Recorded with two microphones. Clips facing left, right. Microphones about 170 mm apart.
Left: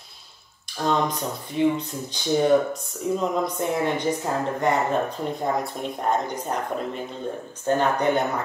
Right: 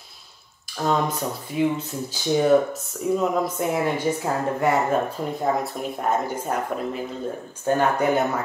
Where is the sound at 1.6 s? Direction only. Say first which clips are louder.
Left 1 dB; 5° right (ahead or behind).